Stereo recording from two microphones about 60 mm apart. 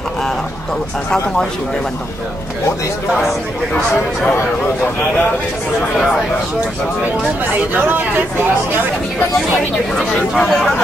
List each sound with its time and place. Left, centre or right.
9.9 s speech: centre